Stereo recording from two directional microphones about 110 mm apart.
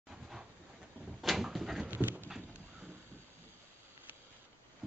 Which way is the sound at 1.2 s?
Centre (ahead or behind).